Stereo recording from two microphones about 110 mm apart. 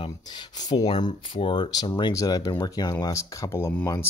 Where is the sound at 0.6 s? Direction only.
40° left (ahead or behind).